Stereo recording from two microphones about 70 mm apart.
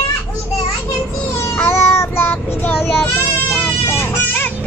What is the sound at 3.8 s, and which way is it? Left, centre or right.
Vehicle, left.